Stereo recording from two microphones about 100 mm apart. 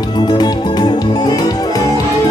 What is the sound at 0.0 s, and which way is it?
Music, 45° left (ahead or behind).